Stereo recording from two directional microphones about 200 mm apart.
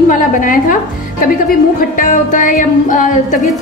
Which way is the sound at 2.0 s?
40° left (ahead or behind).